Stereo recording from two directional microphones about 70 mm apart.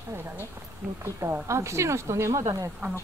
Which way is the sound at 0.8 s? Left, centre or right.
Centre.